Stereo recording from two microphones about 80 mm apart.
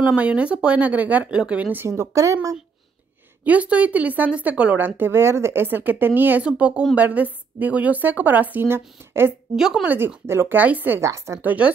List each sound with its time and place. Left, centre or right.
0.0 s speech: centre
1.9 s a woman's voice: right
3.4 s speech: centre
6.4 s speech: centre; by 9.3 s right
9.6 s speech: centre
9.8 s speech: right
11.0 s a woman's voice: right
11.4 s speech: centre